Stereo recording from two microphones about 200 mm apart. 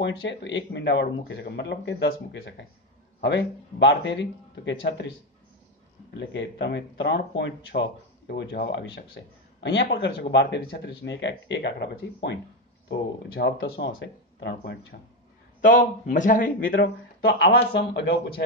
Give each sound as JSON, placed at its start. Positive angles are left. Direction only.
{"t": 0.0, "sound": "speech", "side_deg": 65}
{"t": 6.1, "sound": "speech", "side_deg": 65}
{"t": 15.6, "sound": "speech", "side_deg": 40}